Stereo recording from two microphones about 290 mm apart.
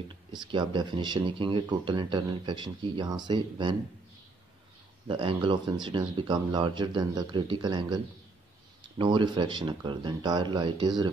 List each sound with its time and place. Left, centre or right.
0.3 s speech: centre
5.0 s speech: centre